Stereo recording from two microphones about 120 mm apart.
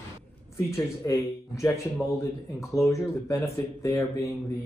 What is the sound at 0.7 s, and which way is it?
Speech, 25° left (ahead or behind).